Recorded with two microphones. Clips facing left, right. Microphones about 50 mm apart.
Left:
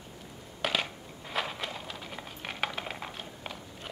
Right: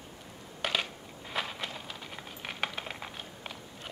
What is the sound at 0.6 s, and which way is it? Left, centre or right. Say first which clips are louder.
Crushing: left 1 dB; centre.